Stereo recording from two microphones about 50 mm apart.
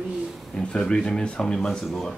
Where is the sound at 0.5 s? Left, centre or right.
Centre.